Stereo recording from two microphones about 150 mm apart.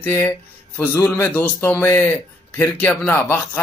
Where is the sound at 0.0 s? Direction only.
15° left (ahead or behind).